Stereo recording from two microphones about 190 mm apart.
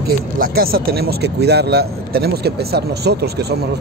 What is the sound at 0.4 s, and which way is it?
Speech, 50° right (ahead or behind).